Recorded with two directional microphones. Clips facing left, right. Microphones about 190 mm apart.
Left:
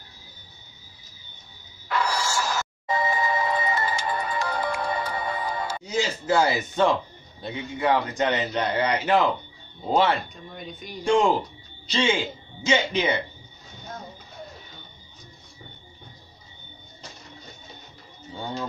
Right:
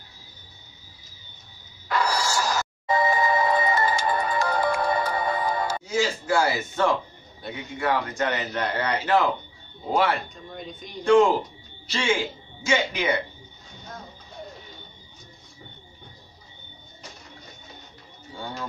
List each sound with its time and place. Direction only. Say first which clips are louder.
1.9 s music: right 1 dB; 40° right (ahead or behind)
5.9 s speech: left 1 dB; 20° left (ahead or behind)
18.4 s music: left 3 dB; 25° left (ahead or behind)